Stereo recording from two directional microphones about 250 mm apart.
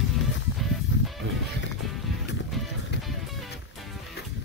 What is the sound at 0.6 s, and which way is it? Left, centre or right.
Music, centre.